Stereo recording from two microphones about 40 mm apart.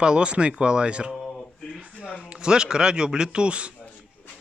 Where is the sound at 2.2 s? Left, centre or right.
Right.